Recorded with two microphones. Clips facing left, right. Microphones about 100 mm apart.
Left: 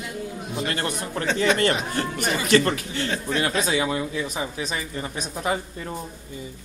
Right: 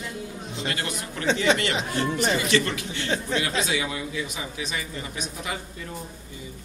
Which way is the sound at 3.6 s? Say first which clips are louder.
Left 4 dB; 35° left (ahead or behind).